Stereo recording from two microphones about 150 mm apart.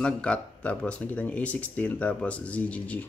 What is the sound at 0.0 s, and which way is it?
Speech, 5° left (ahead or behind).